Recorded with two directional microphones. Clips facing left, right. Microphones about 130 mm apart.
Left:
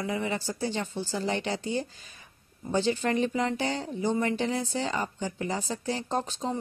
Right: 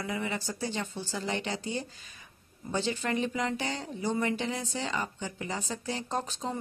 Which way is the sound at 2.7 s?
35° left (ahead or behind).